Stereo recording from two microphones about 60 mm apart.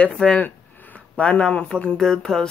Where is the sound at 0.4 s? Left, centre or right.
Left.